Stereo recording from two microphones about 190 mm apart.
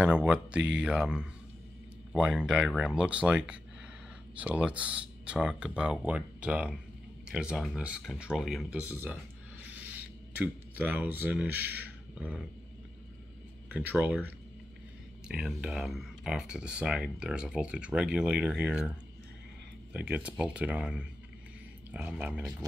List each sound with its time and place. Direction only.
0.0 s speech: 5° right (ahead or behind)
9.7 s a sound: 10° right (ahead or behind)
13.7 s speech: 5° right (ahead or behind)